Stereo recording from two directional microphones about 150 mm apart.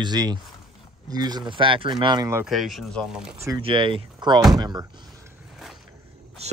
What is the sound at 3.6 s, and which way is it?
Speech, 35° right (ahead or behind).